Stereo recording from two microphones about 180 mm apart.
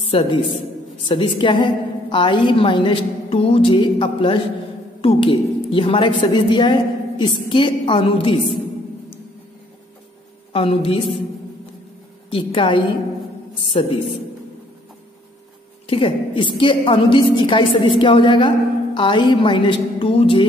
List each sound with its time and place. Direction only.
0.0 s a woman's voice: 30° left (ahead or behind)
10.5 s a woman's voice: 30° left (ahead or behind)
12.3 s a woman's voice: 30° left (ahead or behind)
15.9 s a woman's voice: 30° left (ahead or behind)